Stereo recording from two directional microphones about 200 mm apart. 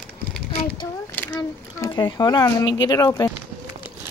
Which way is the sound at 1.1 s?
10° left (ahead or behind).